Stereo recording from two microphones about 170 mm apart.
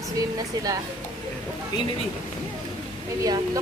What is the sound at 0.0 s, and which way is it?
Speech, 20° right (ahead or behind).